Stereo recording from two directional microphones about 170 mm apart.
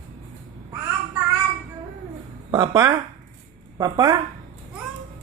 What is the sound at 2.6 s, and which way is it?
A woman's voice, 25° right (ahead or behind).